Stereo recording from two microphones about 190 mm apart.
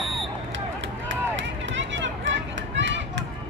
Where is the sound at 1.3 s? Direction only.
75° right (ahead or behind).